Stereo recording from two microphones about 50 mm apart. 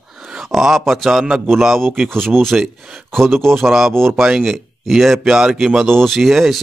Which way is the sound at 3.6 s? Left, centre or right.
Centre.